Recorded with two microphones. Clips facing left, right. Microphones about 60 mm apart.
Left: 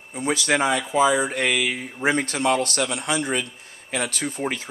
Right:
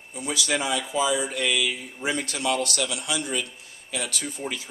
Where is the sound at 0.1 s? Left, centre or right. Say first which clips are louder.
Left 5 dB; left.